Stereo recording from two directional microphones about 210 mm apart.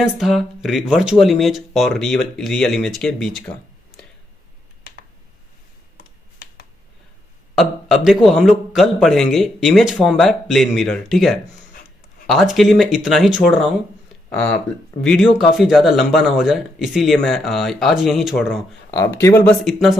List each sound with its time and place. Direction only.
0.0 s speech: centre (ahead or behind)
5.9 s computer keyboard: 45° left (ahead or behind)
7.5 s speech: centre (ahead or behind)
15.0 s speech: centre (ahead or behind)
19.1 s speech: 10° left (ahead or behind)